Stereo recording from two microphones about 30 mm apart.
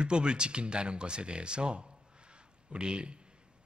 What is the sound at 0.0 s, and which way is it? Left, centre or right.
A man's voice, right.